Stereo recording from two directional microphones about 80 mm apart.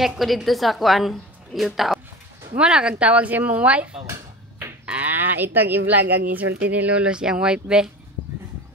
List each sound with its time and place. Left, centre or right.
0.0 s a woman's voice: centre
2.5 s a woman's voice: centre